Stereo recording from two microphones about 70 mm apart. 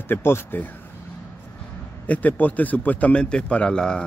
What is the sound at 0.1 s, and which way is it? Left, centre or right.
Speech, left.